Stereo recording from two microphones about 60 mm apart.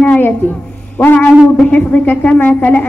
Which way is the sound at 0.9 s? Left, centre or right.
Left.